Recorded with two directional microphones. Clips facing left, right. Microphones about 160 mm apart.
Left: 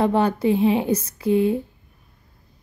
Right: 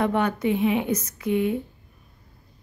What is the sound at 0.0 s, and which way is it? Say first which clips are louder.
Speech: left 4 dB; 30° left (ahead or behind).